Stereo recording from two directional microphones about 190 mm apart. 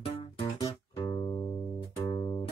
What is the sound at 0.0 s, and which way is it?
Music, 25° left (ahead or behind).